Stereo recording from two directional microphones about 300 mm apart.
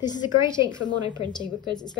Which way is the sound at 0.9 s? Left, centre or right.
Centre.